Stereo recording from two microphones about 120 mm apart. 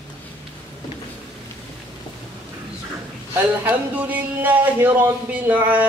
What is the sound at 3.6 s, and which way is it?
Speech, 15° right (ahead or behind).